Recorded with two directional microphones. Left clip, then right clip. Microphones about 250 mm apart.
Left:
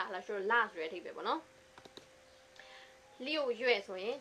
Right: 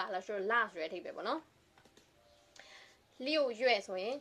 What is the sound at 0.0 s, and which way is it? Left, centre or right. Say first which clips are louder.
A woman's voice: right 1 dB; right.